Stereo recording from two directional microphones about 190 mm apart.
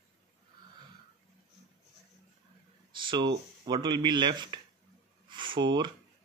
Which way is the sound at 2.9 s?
25° right (ahead or behind).